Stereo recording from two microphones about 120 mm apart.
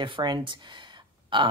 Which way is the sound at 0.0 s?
40° right (ahead or behind).